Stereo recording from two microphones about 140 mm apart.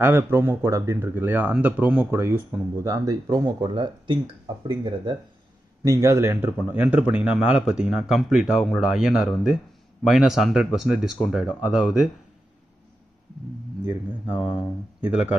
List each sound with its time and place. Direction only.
0.0 s speech: 15° right (ahead or behind); by 5.1 s 35° right (ahead or behind)
5.9 s a man's voice: 20° right (ahead or behind); by 12.1 s 5° right (ahead or behind)
14.4 s speech: 5° right (ahead or behind)